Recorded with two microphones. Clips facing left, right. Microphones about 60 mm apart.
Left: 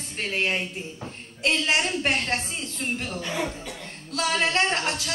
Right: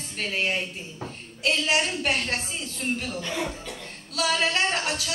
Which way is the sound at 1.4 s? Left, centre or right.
Left.